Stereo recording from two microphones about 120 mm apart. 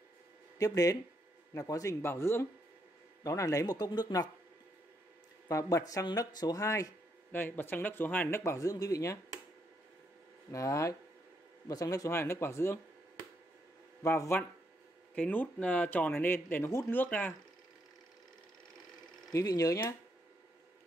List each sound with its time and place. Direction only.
0.6 s speech: 30° left (ahead or behind)
5.5 s speech: 30° left (ahead or behind)
7.3 s speech: 15° left (ahead or behind)
10.5 s speech: 25° left (ahead or behind)
14.0 s speech: 25° left (ahead or behind)
15.1 s speech: 15° left (ahead or behind)
19.3 s speech: 30° left (ahead or behind)